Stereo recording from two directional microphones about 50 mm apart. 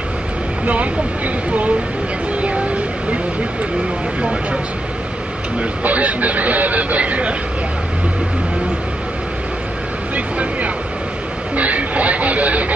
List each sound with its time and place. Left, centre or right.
0.7 s speech: right
2.4 s a sound: right
4.2 s speech: right
5.6 s speech: right
10.1 s speech: right
11.5 s a sound: right